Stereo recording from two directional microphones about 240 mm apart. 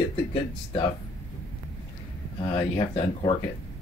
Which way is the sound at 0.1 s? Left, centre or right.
Left.